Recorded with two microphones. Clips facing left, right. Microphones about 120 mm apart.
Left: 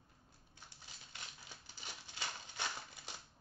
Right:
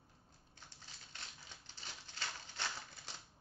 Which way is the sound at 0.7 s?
10° left (ahead or behind).